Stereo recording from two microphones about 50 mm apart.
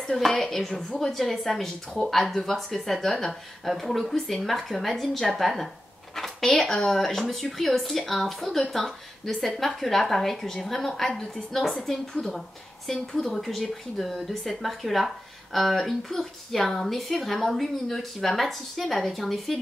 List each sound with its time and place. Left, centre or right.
0.0 s speech: centre
11.1 s a woman's voice: centre